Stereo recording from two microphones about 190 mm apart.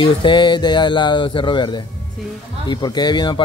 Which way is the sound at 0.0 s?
25° left (ahead or behind).